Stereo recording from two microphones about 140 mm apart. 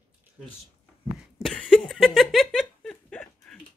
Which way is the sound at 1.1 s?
5° right (ahead or behind).